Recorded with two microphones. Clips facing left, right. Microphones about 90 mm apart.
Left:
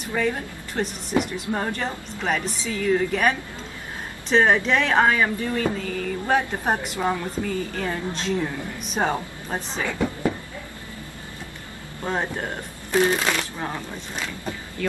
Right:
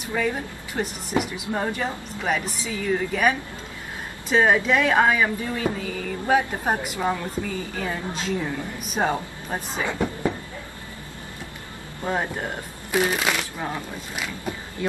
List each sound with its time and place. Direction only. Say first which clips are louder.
0.1 s speech: left 1 dB; centre (ahead or behind)
9.8 s a sound: even; 20° right (ahead or behind)
12.9 s speech: left 2 dB; 5° right (ahead or behind)
14.1 s speech: right 1 dB; 15° right (ahead or behind)